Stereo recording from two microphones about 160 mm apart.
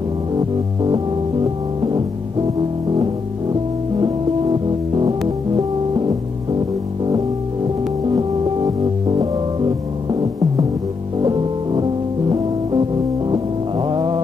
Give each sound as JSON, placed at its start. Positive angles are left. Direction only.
{"t": 0.4, "sound": "music", "side_deg": -25}
{"t": 4.0, "sound": "music", "side_deg": -30}
{"t": 8.1, "sound": "music", "side_deg": -25}
{"t": 11.2, "sound": "music", "side_deg": -30}